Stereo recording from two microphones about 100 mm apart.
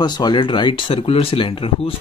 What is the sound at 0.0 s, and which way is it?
Speech, 45° left (ahead or behind).